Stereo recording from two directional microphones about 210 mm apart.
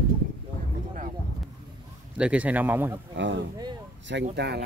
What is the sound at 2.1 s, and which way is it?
Speech, 5° right (ahead or behind).